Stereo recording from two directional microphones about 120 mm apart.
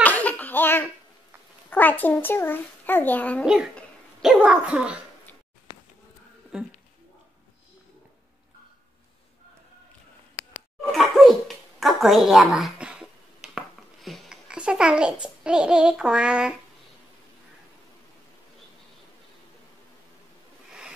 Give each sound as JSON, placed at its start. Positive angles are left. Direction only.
{"t": 0.0, "sound": "a sound", "side_deg": 15}
{"t": 1.7, "sound": "a child's voice", "side_deg": 15}
{"t": 4.4, "sound": "speech", "side_deg": -10}
{"t": 6.5, "sound": "speech", "side_deg": -5}
{"t": 10.9, "sound": "dog", "side_deg": 0}